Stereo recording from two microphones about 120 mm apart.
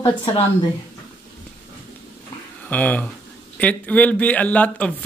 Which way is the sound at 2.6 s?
10° left (ahead or behind).